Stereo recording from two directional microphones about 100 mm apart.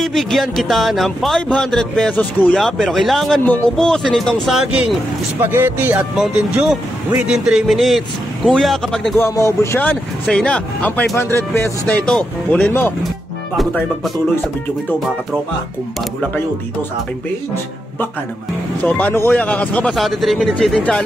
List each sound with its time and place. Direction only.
0.0 s speech: 5° left (ahead or behind)
5.4 s speech: 20° right (ahead or behind)
6.1 s speech: 5° right (ahead or behind)
9.2 s speech: 30° left (ahead or behind)
10.2 s speech: 10° left (ahead or behind)
11.1 s speech: 25° left (ahead or behind)
11.8 s speech: 10° left (ahead or behind)
18.9 s speech: 15° left (ahead or behind)